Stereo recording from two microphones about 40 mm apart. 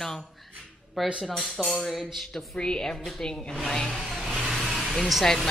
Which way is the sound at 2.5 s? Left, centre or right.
Left.